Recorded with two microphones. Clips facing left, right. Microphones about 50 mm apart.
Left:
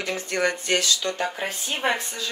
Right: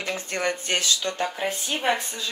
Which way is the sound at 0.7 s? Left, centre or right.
Right.